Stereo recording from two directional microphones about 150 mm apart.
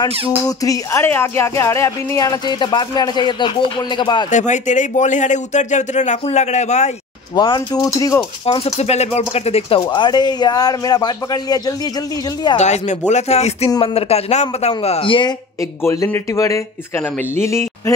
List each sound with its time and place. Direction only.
0.5 s speech: 20° left (ahead or behind)
4.3 s speech: 55° left (ahead or behind)
7.3 s speech: 30° left (ahead or behind)
8.5 s speech: 40° left (ahead or behind); by 11.7 s 25° left (ahead or behind)
12.5 s speech: 50° left (ahead or behind)
15.8 s speech: 20° left (ahead or behind)